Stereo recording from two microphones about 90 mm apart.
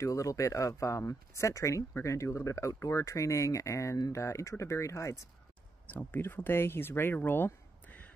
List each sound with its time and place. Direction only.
0.0 s speech: 35° left (ahead or behind)
5.9 s speech: 20° left (ahead or behind)